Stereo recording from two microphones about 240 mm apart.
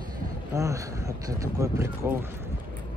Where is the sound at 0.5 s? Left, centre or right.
Centre.